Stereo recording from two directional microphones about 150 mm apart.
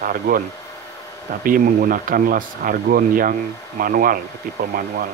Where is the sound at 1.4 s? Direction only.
65° right (ahead or behind).